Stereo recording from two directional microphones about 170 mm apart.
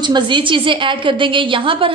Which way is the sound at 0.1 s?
30° right (ahead or behind).